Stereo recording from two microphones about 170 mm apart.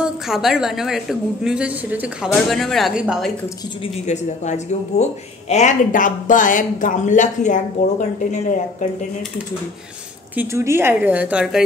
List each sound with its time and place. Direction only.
0.0 s a woman's voice: centre (ahead or behind)
4.1 s speech: 45° left (ahead or behind)
10.3 s a woman's voice: 15° right (ahead or behind)